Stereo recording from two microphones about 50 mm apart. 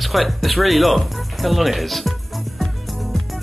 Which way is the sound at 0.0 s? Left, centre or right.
Centre.